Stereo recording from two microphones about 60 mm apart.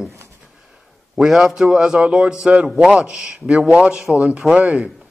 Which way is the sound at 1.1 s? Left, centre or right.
Centre.